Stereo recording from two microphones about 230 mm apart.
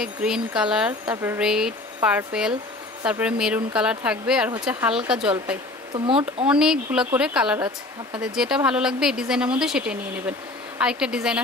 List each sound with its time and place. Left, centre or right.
0.0 s speech: centre
6.0 s speech: right
6.4 s speech: centre